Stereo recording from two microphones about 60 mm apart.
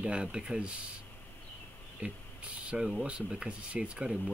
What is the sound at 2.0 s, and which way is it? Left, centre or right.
Speech, right.